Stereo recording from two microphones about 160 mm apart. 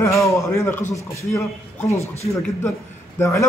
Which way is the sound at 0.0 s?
20° left (ahead or behind).